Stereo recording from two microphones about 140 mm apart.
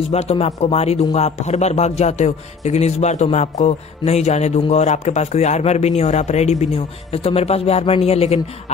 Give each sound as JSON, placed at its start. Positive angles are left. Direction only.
{"t": 0.1, "sound": "a man's voice", "side_deg": 50}